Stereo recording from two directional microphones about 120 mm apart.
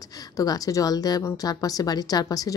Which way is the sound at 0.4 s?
30° left (ahead or behind).